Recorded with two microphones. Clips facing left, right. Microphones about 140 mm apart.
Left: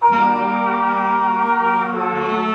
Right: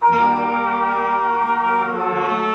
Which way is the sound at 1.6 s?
20° left (ahead or behind).